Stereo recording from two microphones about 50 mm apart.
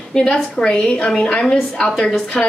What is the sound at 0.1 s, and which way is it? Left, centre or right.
Speech, centre.